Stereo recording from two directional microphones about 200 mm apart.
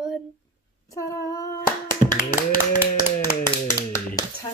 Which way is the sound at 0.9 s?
15° left (ahead or behind).